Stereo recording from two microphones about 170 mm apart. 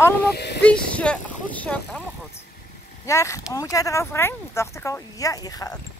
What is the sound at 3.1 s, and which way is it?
Dog, 20° left (ahead or behind).